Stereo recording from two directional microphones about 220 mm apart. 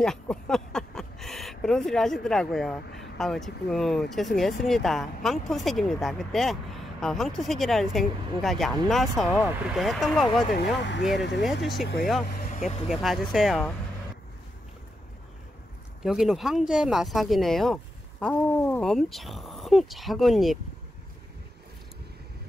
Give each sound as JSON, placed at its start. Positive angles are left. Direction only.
{"t": 0.0, "sound": "speech", "side_deg": 5}
{"t": 10.8, "sound": "speech", "side_deg": 50}
{"t": 11.6, "sound": "speech", "side_deg": 0}
{"t": 16.0, "sound": "speech", "side_deg": 0}